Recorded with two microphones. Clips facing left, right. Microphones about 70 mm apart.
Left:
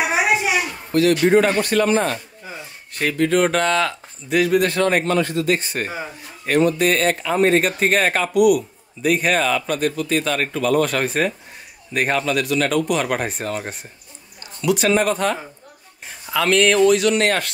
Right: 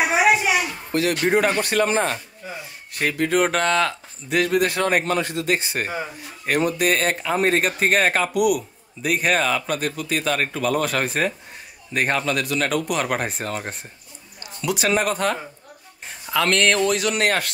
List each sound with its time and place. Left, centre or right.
1.2 s speech: centre
1.7 s speech: right
2.4 s speech: centre
5.2 s speech: centre